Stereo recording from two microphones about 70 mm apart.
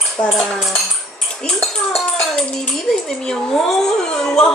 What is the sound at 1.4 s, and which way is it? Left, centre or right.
Speech, centre.